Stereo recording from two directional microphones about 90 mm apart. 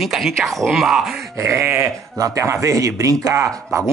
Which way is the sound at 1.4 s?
30° right (ahead or behind).